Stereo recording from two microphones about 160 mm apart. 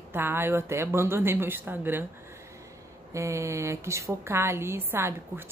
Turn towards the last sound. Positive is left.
turn(degrees=-15)  # may be behind; listen again after turning